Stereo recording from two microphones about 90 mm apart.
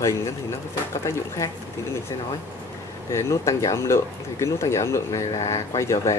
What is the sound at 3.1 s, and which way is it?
Speech, 35° left (ahead or behind).